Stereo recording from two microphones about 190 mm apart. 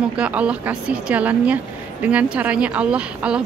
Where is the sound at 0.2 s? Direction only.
5° right (ahead or behind).